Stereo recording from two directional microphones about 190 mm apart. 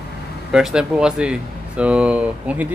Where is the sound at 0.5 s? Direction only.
5° right (ahead or behind).